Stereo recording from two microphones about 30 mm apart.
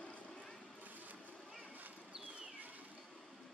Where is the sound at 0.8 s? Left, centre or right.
Right.